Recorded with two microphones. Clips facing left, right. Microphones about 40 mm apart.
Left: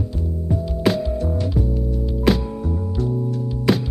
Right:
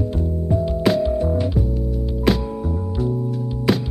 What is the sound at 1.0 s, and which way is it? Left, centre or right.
Music, centre.